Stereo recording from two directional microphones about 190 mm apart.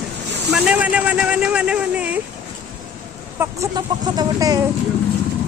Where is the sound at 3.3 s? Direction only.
20° right (ahead or behind).